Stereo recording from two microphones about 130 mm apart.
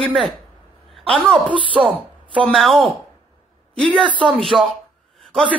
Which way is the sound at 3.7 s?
10° left (ahead or behind).